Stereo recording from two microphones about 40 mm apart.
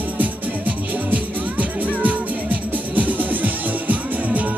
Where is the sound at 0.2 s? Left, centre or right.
Right.